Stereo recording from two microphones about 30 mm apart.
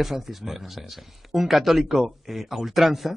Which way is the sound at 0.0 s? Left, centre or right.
Centre.